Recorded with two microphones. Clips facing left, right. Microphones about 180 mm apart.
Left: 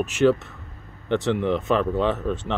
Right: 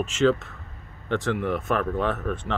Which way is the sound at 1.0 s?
20° left (ahead or behind).